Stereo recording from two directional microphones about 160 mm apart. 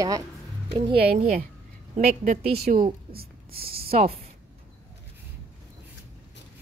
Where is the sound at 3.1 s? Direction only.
70° right (ahead or behind).